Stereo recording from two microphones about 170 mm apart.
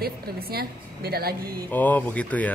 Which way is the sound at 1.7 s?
10° left (ahead or behind).